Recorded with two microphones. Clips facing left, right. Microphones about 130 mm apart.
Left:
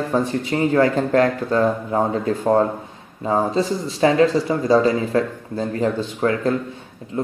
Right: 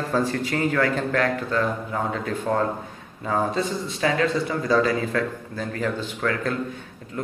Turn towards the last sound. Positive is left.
turn(degrees=25)  # may be behind; listen again after turning